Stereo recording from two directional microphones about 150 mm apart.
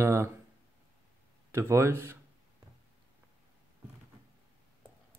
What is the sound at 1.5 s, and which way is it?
Speech, 15° right (ahead or behind).